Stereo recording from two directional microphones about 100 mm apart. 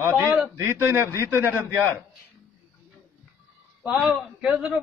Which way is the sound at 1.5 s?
25° right (ahead or behind).